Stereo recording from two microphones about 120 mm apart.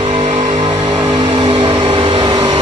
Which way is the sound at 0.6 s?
40° right (ahead or behind).